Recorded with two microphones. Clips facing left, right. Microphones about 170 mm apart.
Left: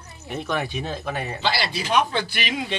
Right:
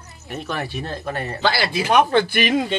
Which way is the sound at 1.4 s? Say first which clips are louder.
Right 6 dB; 50° right (ahead or behind).